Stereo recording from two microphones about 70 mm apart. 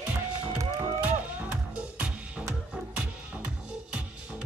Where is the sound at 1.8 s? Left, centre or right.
Centre.